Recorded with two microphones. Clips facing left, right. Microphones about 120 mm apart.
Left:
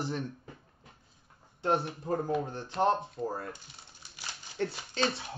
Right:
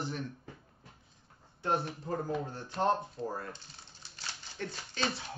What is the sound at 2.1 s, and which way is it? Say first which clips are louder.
Speech: left 5 dB; 20° left (ahead or behind).